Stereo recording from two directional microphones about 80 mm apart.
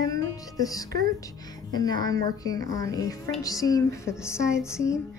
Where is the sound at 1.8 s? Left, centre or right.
Left.